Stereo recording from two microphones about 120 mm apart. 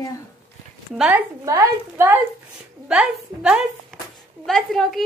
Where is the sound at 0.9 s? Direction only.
10° right (ahead or behind).